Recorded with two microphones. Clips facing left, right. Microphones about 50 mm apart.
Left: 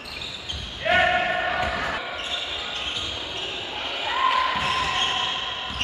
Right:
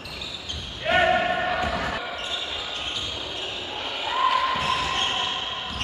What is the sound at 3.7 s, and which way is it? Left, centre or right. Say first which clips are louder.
Basketball bounce: left 1 dB; centre.